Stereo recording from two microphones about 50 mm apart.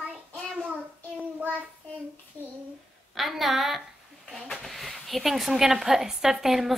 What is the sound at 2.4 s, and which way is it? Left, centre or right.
Speech, right.